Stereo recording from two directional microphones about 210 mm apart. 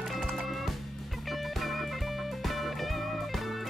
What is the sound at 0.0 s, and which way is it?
Music, centre (ahead or behind).